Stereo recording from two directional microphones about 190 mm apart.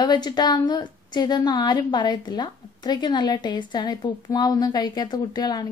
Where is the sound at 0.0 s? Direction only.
20° left (ahead or behind).